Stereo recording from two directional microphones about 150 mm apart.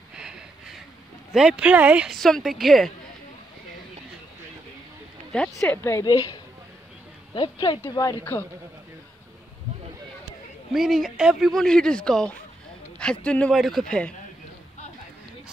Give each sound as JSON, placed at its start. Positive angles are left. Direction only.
{"t": 0.1, "sound": "a sound", "side_deg": -5}
{"t": 1.3, "sound": "speech", "side_deg": -5}
{"t": 2.1, "sound": "speech", "side_deg": 5}
{"t": 5.6, "sound": "a woman's voice", "side_deg": 20}
{"t": 7.3, "sound": "a woman's voice", "side_deg": 30}
{"t": 10.7, "sound": "a man's voice", "side_deg": 0}